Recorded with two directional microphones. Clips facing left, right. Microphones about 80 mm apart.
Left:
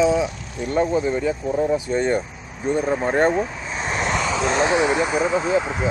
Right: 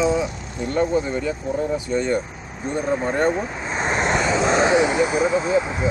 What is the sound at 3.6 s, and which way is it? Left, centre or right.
Vehicle, right.